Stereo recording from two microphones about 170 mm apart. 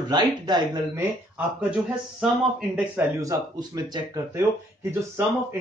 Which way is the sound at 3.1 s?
20° right (ahead or behind).